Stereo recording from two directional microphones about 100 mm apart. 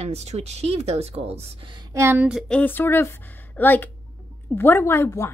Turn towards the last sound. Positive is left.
turn(degrees=30)  # may be behind; listen again after turning